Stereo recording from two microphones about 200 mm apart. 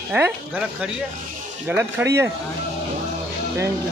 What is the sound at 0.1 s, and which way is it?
Speech, 10° right (ahead or behind).